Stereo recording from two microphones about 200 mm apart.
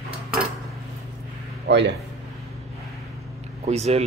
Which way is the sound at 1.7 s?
60° right (ahead or behind).